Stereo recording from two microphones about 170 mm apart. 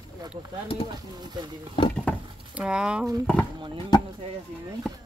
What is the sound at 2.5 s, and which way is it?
Speech, 5° right (ahead or behind).